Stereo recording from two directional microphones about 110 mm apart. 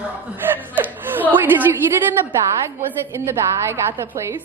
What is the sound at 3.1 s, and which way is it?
Speech, 25° right (ahead or behind).